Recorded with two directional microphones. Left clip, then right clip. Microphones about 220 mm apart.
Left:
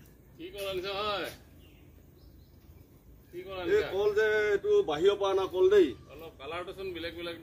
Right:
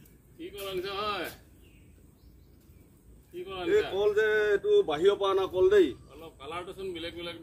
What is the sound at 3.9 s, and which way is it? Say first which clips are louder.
A man's voice: right 1 dB; centre (ahead or behind).